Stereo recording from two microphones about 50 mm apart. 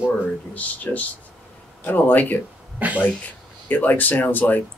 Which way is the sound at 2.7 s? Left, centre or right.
Right.